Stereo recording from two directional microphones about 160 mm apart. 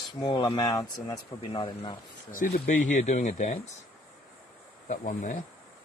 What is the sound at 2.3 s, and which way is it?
Speech, 55° left (ahead or behind).